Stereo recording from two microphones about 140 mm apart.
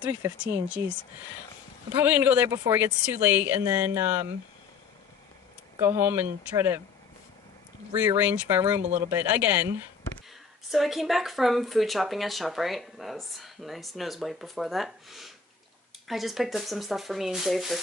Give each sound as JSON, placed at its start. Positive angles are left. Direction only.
{"t": 0.4, "sound": "speech", "side_deg": -10}
{"t": 5.8, "sound": "speech", "side_deg": -15}
{"t": 7.9, "sound": "speech", "side_deg": -15}
{"t": 8.8, "sound": "speech", "side_deg": -60}
{"t": 9.1, "sound": "speech", "side_deg": -15}
{"t": 10.7, "sound": "speech", "side_deg": 0}